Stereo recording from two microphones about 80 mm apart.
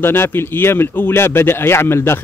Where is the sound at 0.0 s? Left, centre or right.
Left.